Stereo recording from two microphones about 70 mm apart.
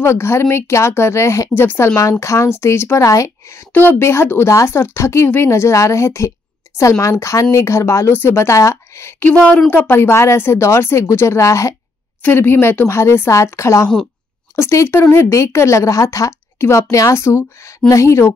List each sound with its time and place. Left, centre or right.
0.0 s speech: left
1.5 s speech: left
2.0 s speech: left
9.3 s speech: centre
9.7 s speech: left
12.2 s speech: left